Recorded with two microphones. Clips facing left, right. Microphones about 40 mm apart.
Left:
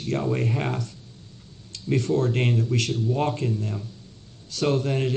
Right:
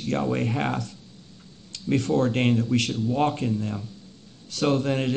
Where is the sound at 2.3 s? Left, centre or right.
Right.